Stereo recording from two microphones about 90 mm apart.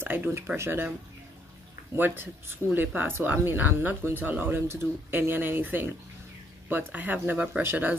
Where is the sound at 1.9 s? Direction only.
25° right (ahead or behind).